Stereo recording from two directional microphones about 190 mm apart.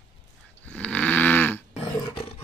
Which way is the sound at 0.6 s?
5° left (ahead or behind).